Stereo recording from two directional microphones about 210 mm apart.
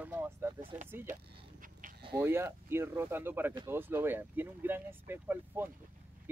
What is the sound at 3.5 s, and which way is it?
Speech, 20° right (ahead or behind).